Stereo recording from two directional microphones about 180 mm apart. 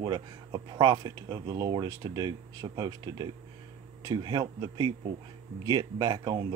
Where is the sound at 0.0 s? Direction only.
20° right (ahead or behind).